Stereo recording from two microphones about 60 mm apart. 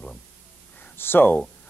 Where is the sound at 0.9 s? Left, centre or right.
Left.